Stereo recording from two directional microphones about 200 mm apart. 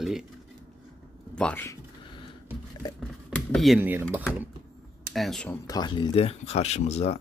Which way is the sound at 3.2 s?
Centre (ahead or behind).